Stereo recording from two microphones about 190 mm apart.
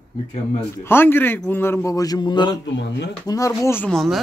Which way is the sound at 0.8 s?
10° left (ahead or behind).